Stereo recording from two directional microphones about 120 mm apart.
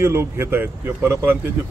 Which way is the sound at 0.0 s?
20° right (ahead or behind).